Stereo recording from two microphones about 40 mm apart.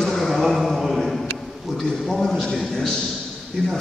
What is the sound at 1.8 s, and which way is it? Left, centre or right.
A man's voice, centre.